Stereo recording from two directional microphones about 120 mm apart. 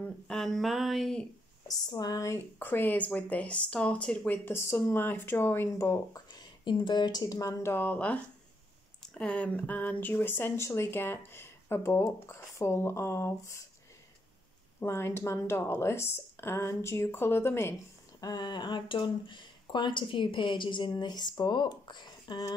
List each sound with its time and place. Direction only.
0.0 s a sound: 5° left (ahead or behind)
1.7 s speech: 30° left (ahead or behind)
14.8 s speech: 20° left (ahead or behind)
18.2 s speech: 35° left (ahead or behind)